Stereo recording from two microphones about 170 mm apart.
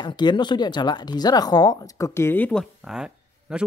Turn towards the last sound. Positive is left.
turn(degrees=-5)  # may be behind; listen again after turning